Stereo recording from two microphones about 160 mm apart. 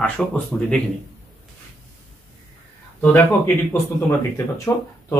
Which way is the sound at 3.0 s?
15° left (ahead or behind).